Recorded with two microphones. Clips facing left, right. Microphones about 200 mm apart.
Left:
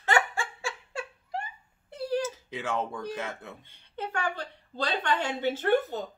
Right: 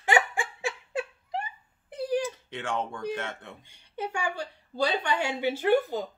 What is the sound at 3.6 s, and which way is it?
Speech, 15° right (ahead or behind).